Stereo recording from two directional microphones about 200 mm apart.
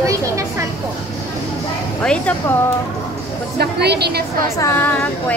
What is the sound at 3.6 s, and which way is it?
Speech, 55° right (ahead or behind).